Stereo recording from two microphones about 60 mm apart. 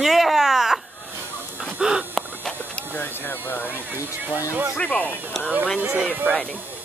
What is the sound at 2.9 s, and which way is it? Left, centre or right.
Speech, left.